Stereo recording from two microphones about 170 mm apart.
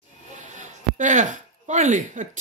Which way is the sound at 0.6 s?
45° right (ahead or behind).